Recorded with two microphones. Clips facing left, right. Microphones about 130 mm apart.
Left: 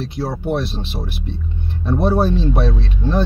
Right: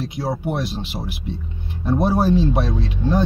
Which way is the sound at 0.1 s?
15° right (ahead or behind).